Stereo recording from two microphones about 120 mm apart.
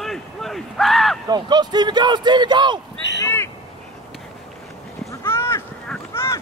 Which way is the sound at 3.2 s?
20° left (ahead or behind).